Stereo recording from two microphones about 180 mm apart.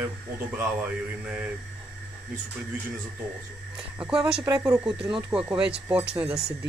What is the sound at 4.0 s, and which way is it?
Speech, 5° right (ahead or behind).